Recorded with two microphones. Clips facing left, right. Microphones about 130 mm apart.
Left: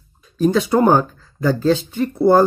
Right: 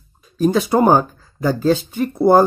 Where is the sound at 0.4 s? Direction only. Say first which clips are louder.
Even; 10° right (ahead or behind).